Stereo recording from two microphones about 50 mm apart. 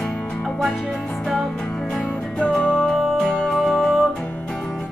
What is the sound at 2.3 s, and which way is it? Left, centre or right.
Music, centre.